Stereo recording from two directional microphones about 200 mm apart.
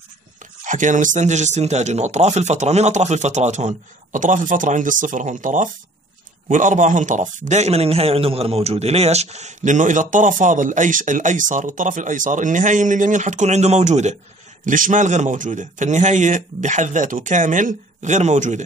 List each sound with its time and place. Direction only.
0.7 s a man's voice: 40° right (ahead or behind)